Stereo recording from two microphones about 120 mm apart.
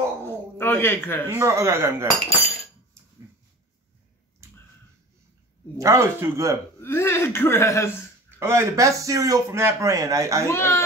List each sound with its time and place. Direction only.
0.3 s a man's voice: 20° left (ahead or behind)
1.4 s a man's voice: 25° right (ahead or behind)
4.4 s a sound: 25° right (ahead or behind)
5.8 s a man's voice: 25° right (ahead or behind)
6.8 s speech: 20° left (ahead or behind)
8.3 s a man's voice: 20° right (ahead or behind)
10.4 s speech: 20° left (ahead or behind)